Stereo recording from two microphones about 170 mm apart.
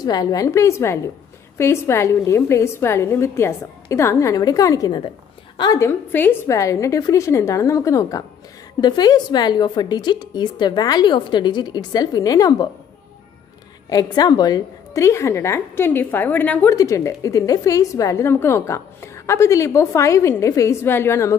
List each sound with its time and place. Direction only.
0.0 s a woman's voice: 20° left (ahead or behind)
13.8 s a woman's voice: 25° left (ahead or behind)